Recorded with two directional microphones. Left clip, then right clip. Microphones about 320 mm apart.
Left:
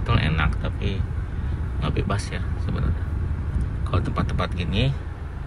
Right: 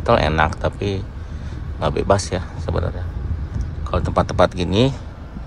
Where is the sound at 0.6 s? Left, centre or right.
Right.